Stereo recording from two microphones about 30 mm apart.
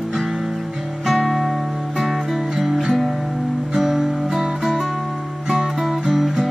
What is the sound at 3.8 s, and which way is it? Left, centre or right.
Music, centre.